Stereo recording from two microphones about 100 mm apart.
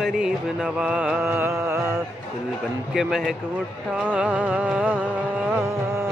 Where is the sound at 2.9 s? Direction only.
5° right (ahead or behind).